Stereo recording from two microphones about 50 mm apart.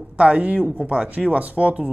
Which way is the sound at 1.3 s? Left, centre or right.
Right.